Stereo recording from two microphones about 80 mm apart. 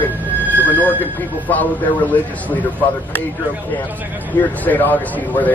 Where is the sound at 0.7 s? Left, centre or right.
Left.